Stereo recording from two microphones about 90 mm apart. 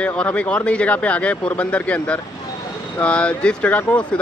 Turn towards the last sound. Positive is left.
turn(degrees=15)  # may be behind; listen again after turning